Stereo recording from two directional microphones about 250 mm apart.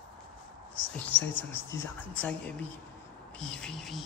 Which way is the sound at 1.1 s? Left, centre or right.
Left.